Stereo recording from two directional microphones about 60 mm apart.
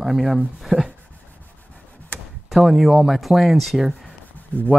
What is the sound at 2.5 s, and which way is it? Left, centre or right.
Speech, centre.